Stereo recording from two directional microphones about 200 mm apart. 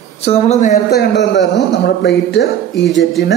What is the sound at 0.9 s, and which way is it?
Speech, 55° left (ahead or behind).